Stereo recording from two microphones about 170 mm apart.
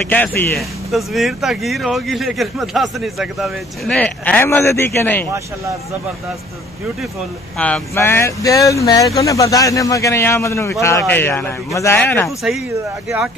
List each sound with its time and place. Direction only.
0.1 s speech: 10° left (ahead or behind)
0.6 s speech: centre (ahead or behind)
7.5 s speech: 10° left (ahead or behind)